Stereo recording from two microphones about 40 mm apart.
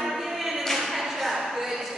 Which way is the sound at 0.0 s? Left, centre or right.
Centre.